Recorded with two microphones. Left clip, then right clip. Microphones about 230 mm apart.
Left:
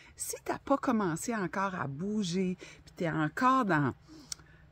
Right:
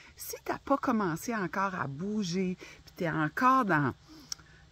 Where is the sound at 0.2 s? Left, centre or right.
Centre.